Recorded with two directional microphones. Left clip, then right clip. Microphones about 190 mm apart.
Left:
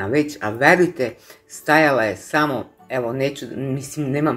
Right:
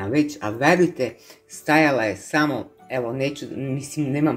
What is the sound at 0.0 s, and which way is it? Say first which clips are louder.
Speech: left 2 dB; 10° right (ahead or behind).